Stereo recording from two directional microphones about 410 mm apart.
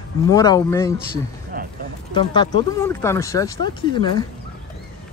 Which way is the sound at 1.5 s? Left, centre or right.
Right.